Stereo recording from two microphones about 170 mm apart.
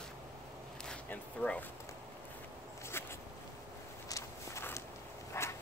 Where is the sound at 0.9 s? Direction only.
10° left (ahead or behind).